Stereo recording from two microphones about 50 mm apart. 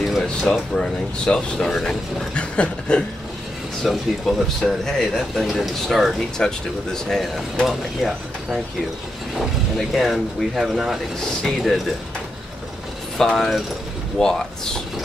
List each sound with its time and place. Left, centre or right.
0.2 s speech: centre
2.3 s a sound: left
3.8 s speech: centre
4.8 s speech: centre
6.3 s speech: centre
7.6 s speech: centre
13.2 s speech: centre